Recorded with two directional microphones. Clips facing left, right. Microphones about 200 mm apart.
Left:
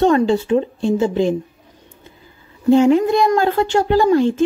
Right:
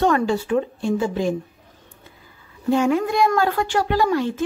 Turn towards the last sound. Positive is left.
turn(degrees=30)  # may be behind; listen again after turning